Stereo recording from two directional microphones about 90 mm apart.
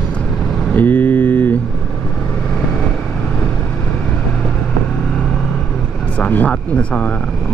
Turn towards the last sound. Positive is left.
turn(degrees=15)  # may be behind; listen again after turning